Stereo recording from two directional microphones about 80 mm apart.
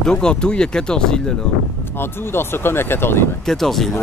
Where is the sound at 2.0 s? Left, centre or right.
Left.